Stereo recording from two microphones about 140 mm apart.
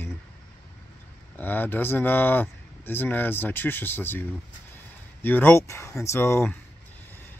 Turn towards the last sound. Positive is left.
turn(degrees=15)  # may be behind; listen again after turning